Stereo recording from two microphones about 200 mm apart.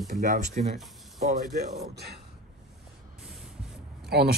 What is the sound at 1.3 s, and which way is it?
Speech, 50° right (ahead or behind).